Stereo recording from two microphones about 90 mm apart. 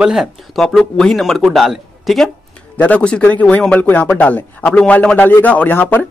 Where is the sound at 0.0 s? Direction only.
5° right (ahead or behind).